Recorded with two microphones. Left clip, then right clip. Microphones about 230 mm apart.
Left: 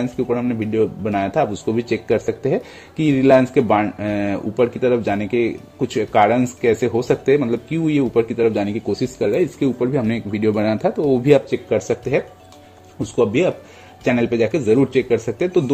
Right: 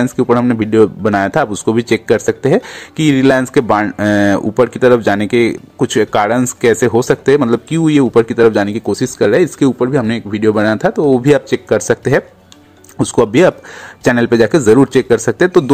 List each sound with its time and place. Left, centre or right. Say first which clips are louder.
0.0 s a man's voice: right 9 dB; right